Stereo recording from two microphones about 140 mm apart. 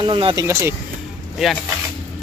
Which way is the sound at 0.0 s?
40° right (ahead or behind).